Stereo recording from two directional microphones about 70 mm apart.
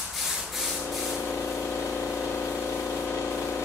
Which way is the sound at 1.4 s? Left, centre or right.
Left.